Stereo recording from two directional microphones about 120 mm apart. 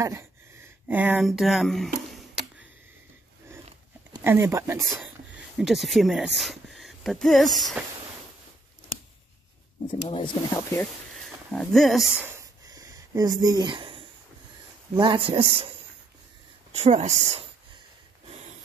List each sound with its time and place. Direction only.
0.0 s speech: 25° right (ahead or behind)
0.8 s speech: 15° right (ahead or behind)
1.2 s speech: centre (ahead or behind)
4.2 s speech: 20° right (ahead or behind)
5.6 s speech: centre (ahead or behind)
9.8 s speech: 45° left (ahead or behind)
10.5 s speech: 25° left (ahead or behind)
11.5 s speech: 5° left (ahead or behind)
12.6 s a sound: 30° right (ahead or behind)
15.0 s speech: 45° right (ahead or behind)
16.7 s speech: 70° right (ahead or behind)